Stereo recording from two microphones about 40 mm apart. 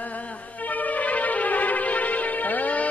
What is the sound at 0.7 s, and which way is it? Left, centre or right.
Music, left.